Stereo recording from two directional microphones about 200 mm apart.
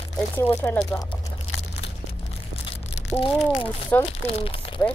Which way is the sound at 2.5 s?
30° left (ahead or behind).